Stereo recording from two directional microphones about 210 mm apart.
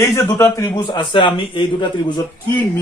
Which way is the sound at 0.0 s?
10° left (ahead or behind).